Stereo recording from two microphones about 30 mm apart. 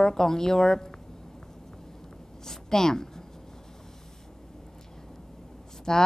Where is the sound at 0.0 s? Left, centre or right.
Centre.